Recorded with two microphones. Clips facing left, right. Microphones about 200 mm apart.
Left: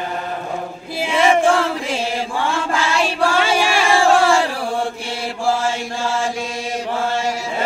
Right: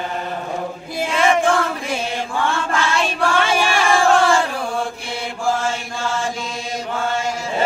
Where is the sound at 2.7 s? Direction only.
10° left (ahead or behind).